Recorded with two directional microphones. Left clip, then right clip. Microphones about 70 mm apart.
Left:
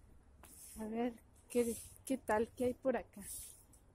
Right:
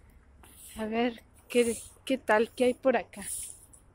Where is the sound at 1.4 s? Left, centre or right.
Left.